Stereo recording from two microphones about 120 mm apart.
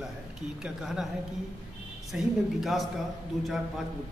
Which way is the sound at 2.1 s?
Centre (ahead or behind).